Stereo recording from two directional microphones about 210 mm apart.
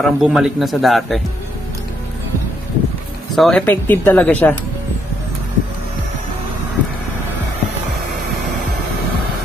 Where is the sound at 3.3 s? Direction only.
5° left (ahead or behind).